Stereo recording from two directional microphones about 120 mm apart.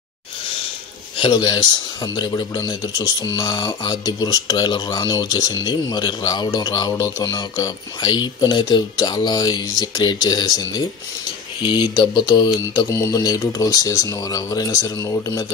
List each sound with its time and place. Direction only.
1.1 s speech: 45° left (ahead or behind); by 15.4 s 25° left (ahead or behind)